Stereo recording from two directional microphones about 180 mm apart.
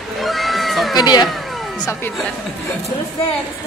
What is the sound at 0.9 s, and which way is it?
Speech, 20° left (ahead or behind).